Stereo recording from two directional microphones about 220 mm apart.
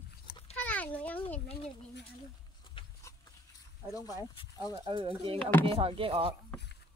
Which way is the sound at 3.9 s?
15° left (ahead or behind).